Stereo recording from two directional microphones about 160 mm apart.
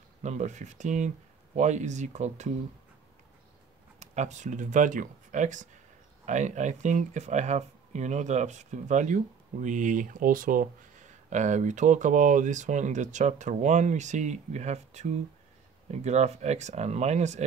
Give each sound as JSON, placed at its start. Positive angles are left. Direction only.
{"t": 0.2, "sound": "speech", "side_deg": -45}
{"t": 4.0, "sound": "speech", "side_deg": -45}